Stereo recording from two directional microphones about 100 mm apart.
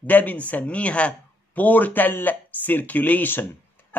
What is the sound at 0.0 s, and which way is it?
A man's voice, 15° left (ahead or behind).